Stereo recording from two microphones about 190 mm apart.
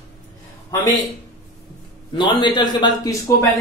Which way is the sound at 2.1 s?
25° left (ahead or behind).